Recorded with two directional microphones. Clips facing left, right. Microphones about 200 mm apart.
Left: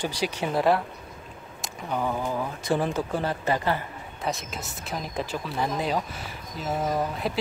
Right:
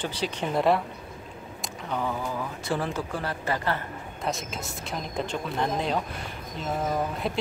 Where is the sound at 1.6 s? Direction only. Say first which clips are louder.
Left 2 dB; 10° left (ahead or behind).